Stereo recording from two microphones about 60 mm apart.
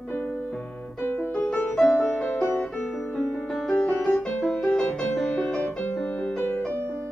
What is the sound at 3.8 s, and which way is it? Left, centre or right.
Music, centre.